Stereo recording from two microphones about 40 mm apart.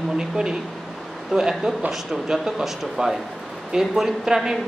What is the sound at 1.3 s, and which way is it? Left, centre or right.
Speech, centre.